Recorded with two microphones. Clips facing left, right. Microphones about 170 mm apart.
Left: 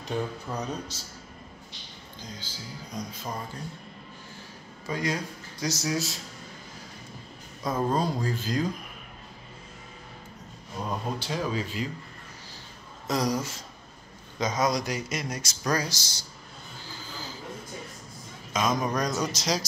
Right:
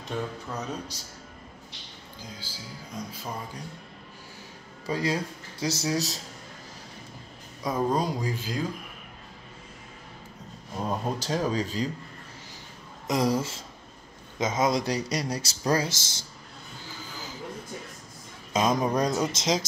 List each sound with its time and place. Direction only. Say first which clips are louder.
0.0 s music: left 2 dB; centre (ahead or behind)
0.9 s speech: left 1 dB; 15° right (ahead or behind)
2.2 s music: left 1 dB; 5° right (ahead or behind)
4.8 s speech: right 2 dB; 30° right (ahead or behind)
7.6 s speech: even; 15° right (ahead or behind)
11.1 s speech: right 3 dB; 40° right (ahead or behind)
13.0 s speech: right 2 dB; 20° right (ahead or behind)
18.5 s speech: right 3 dB; 35° right (ahead or behind)